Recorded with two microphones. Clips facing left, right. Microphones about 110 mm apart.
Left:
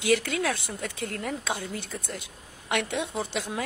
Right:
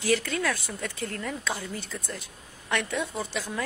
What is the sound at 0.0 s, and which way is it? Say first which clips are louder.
A woman's voice: left 1 dB; 60° left (ahead or behind).